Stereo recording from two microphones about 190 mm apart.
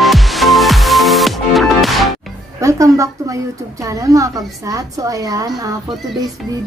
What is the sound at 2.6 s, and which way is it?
A woman's voice, 15° right (ahead or behind).